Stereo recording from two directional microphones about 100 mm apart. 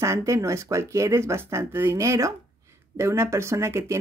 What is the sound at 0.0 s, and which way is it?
Speech, 30° right (ahead or behind).